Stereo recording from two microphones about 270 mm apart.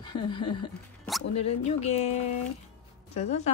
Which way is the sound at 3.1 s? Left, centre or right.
Left.